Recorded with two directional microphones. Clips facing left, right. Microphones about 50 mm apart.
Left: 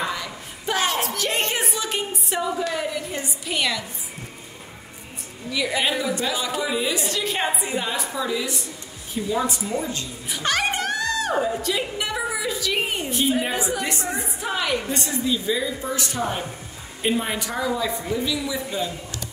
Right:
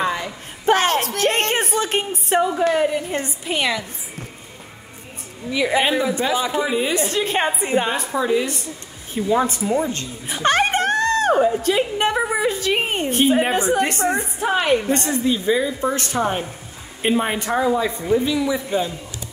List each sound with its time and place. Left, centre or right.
0.0 s a sound: right
3.4 s a woman's voice: right
5.5 s a woman's voice: right
6.9 s a woman's voice: right
15.8 s a woman's voice: right